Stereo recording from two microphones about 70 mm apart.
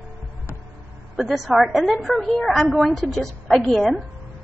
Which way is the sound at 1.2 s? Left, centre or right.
Centre.